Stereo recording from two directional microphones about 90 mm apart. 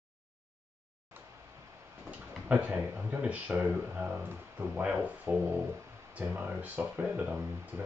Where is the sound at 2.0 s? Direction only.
15° right (ahead or behind).